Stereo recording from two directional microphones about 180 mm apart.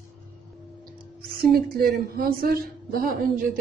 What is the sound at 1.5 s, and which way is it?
A woman's voice, 60° right (ahead or behind).